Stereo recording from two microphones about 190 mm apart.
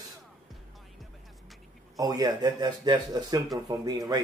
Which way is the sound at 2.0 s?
20° right (ahead or behind).